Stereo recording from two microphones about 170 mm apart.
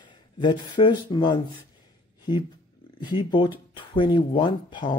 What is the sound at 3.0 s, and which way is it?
Speech, 25° left (ahead or behind).